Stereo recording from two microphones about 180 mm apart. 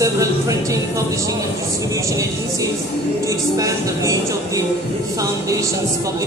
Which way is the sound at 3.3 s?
15° right (ahead or behind).